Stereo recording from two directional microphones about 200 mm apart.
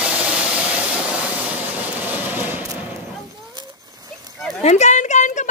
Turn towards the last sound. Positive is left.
turn(degrees=40)  # may be behind; listen again after turning